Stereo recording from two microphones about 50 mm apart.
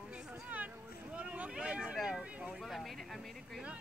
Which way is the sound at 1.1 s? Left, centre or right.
Right.